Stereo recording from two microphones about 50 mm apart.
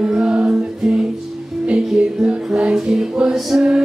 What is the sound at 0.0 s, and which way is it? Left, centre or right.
Music, centre.